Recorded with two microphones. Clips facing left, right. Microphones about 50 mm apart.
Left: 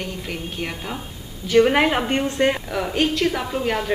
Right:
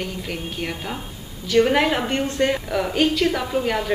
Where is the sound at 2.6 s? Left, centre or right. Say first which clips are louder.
Right 1 dB; centre.